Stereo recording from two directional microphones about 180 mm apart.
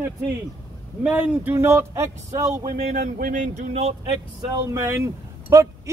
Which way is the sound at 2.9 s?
55° right (ahead or behind).